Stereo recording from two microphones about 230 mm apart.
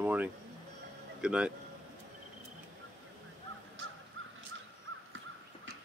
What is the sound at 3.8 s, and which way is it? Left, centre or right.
Crow, right.